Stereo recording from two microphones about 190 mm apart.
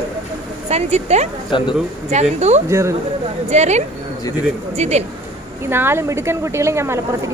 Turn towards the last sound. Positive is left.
turn(degrees=-15)  # may be behind; listen again after turning